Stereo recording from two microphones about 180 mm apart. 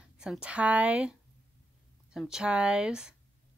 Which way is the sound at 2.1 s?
5° right (ahead or behind).